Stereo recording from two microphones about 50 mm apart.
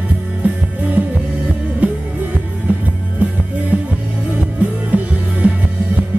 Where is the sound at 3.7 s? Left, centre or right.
Centre.